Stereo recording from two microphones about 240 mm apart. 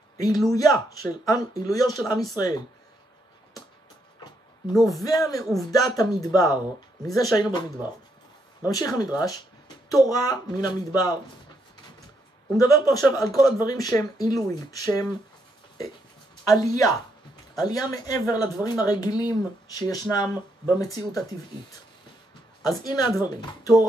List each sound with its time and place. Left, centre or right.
0.5 s speech: centre
5.0 s speech: centre
8.6 s speech: centre
12.5 s speech: centre
16.4 s speech: centre
22.7 s speech: centre